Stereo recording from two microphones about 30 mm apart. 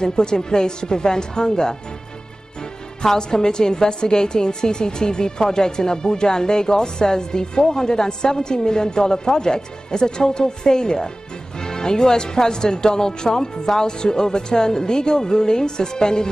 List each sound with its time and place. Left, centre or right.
0.0 s a woman's voice: left
3.0 s a woman's voice: left